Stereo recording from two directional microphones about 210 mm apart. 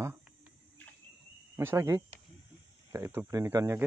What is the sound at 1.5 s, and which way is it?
Speech, 15° right (ahead or behind).